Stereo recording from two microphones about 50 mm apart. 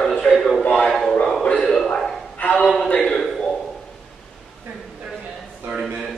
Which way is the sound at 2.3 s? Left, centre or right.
Left.